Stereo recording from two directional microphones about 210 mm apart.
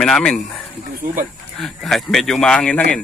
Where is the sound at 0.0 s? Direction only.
5° left (ahead or behind).